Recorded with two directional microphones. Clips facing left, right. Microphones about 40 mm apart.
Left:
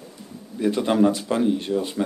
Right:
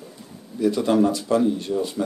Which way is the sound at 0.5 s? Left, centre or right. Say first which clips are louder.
Right 1 dB; left.